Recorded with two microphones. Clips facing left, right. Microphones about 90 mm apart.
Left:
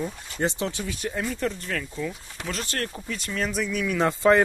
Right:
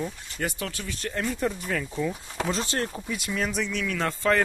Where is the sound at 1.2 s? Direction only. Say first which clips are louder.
Right 1 dB; 10° right (ahead or behind).